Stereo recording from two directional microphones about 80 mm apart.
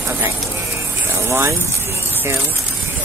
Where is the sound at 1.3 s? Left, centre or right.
Right.